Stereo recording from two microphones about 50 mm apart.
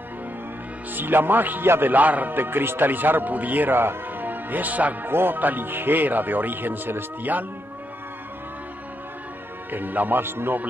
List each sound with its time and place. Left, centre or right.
0.9 s a man's voice: right
5.0 s a man's voice: right
9.7 s a man's voice: right